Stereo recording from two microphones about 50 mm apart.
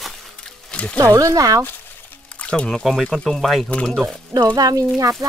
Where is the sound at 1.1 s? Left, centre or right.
Right.